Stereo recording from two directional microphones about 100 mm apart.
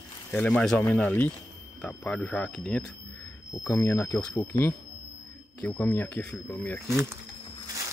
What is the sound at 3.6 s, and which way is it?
Speech, 25° left (ahead or behind).